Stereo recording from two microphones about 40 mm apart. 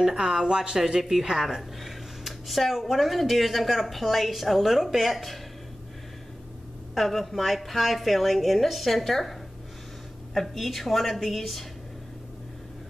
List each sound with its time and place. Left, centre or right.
0.0 s speech: centre
1.3 s speech: centre
7.0 s speech: centre